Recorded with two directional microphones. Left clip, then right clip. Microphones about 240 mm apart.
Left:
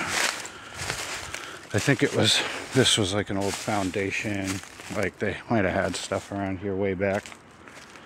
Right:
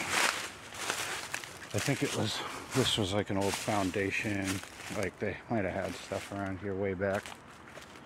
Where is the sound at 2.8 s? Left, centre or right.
Left.